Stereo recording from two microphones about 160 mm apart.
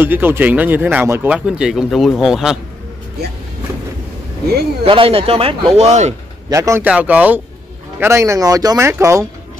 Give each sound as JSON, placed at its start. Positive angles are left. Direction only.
{"t": 0.0, "sound": "speech", "side_deg": -15}
{"t": 4.8, "sound": "speech", "side_deg": -35}
{"t": 6.5, "sound": "a man's voice", "side_deg": -20}